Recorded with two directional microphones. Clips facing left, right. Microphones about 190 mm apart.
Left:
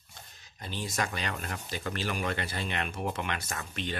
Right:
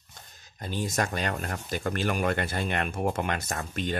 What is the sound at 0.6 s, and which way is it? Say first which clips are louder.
Speech: right 5 dB; 45° right (ahead or behind).